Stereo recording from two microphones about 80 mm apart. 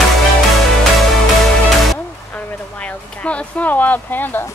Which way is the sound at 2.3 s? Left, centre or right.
Centre.